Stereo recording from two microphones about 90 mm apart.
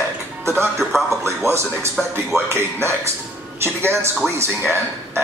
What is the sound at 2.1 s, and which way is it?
Speech, 30° right (ahead or behind).